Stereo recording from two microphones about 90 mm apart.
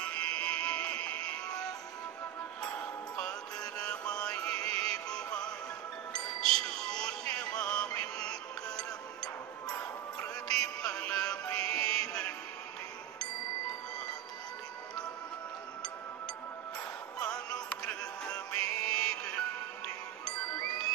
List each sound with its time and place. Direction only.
0.0 s music: 10° left (ahead or behind)
2.6 s music: 10° left (ahead or behind)
8.7 s music: 50° left (ahead or behind)
9.8 s music: 10° left (ahead or behind)
17.2 s music: 15° left (ahead or behind)